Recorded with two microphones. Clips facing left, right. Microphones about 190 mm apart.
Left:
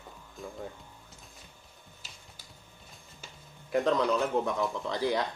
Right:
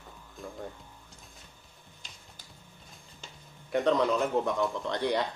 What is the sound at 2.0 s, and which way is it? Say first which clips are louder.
Typing: even; 5° left (ahead or behind).